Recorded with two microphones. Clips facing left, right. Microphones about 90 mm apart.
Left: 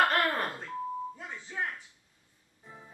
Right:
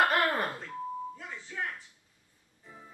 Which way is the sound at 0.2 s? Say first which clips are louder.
Right 1 dB; centre (ahead or behind).